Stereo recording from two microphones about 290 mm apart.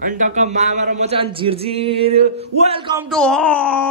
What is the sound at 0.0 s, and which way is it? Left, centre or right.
Speech, right.